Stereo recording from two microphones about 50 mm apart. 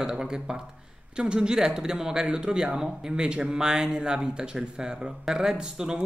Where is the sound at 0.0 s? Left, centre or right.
Centre.